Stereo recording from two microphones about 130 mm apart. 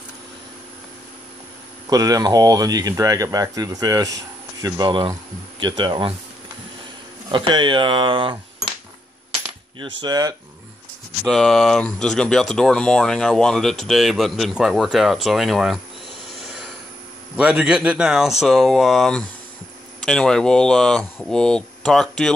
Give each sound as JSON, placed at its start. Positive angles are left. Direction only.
{"t": 1.9, "sound": "speech", "side_deg": -30}
{"t": 7.2, "sound": "speech", "side_deg": -40}
{"t": 9.8, "sound": "speech", "side_deg": -30}
{"t": 11.2, "sound": "speech", "side_deg": 5}
{"t": 17.4, "sound": "speech", "side_deg": -10}